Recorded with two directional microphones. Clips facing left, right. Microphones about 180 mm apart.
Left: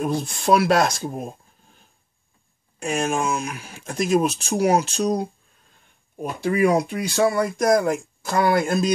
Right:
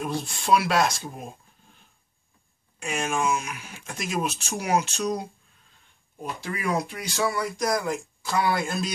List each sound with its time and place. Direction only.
0.0 s speech: 45° left (ahead or behind)
2.8 s speech: 40° left (ahead or behind)
6.2 s speech: 60° left (ahead or behind)